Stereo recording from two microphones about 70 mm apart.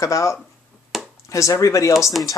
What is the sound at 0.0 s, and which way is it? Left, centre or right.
Speech, left.